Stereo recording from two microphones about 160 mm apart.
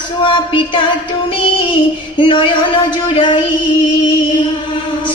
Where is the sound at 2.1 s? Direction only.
30° left (ahead or behind).